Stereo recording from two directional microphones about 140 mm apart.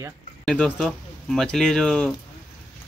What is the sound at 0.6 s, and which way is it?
Speech, 5° left (ahead or behind).